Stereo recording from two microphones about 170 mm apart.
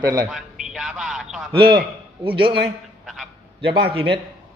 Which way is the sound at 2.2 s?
30° right (ahead or behind).